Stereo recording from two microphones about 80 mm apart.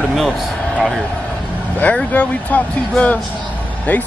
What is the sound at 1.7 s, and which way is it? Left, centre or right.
A man's voice, centre.